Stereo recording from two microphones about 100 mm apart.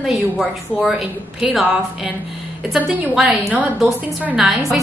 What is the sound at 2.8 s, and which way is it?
Speech, 15° right (ahead or behind).